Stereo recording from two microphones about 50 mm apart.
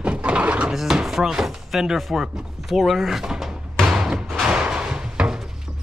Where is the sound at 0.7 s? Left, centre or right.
Centre.